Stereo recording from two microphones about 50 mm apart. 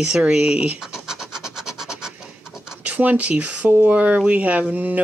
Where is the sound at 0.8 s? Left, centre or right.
Centre.